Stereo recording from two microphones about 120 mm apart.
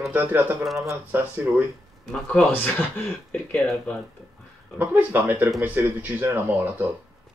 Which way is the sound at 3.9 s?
10° left (ahead or behind).